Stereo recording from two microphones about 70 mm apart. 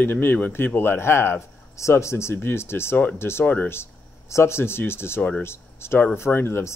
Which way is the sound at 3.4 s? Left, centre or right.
Left.